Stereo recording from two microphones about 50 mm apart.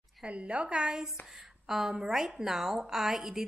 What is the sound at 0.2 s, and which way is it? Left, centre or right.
A woman's voice, right.